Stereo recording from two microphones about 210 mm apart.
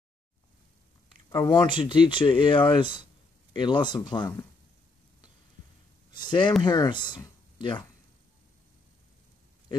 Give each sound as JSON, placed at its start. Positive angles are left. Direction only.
{"t": 1.3, "sound": "speech", "side_deg": 20}
{"t": 6.1, "sound": "speech", "side_deg": 20}